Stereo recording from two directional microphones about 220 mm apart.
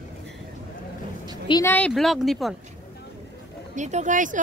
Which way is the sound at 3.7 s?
35° right (ahead or behind).